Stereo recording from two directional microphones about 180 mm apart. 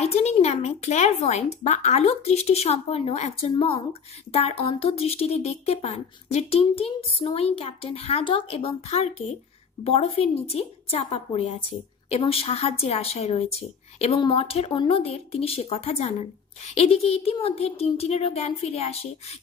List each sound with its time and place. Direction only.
0.0 s speech: 35° left (ahead or behind)